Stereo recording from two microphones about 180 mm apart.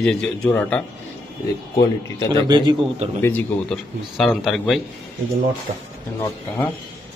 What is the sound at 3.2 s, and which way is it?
A man's voice, 5° left (ahead or behind).